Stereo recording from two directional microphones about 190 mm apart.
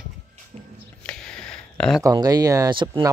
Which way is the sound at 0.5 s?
35° right (ahead or behind).